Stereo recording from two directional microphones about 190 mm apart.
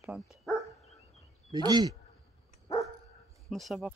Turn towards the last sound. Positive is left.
turn(degrees=0)  # may be behind; listen again after turning